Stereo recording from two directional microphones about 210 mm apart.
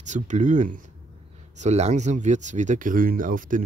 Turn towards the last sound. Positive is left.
turn(degrees=-40)  # may be behind; listen again after turning